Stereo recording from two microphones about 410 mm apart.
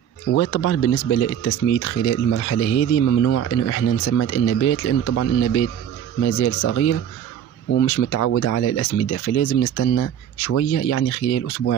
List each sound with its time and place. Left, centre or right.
0.3 s speech: left